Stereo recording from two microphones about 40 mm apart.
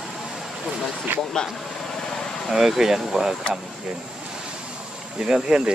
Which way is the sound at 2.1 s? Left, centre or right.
Centre.